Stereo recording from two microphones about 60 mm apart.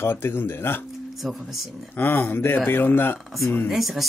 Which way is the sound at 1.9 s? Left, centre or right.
Left.